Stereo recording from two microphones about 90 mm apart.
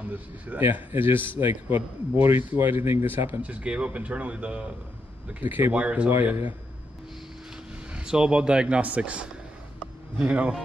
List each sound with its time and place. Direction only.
0.1 s a man's voice: 20° right (ahead or behind)
7.9 s speech: 10° right (ahead or behind)